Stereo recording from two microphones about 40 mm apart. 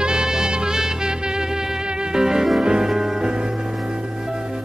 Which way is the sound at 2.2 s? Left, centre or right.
Centre.